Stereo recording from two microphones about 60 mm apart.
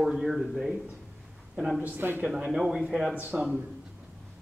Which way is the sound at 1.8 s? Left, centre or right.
Right.